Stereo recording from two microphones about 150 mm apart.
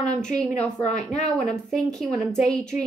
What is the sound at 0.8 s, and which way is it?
Speech, 50° left (ahead or behind).